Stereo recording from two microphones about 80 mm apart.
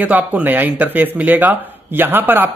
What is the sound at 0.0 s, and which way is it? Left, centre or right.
Speech, right.